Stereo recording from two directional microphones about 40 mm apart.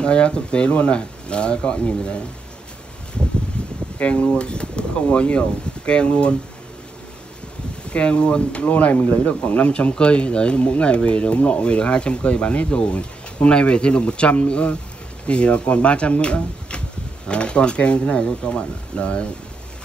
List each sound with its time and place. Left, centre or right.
0.0 s speech: left
4.0 s speech: left
7.9 s speech: left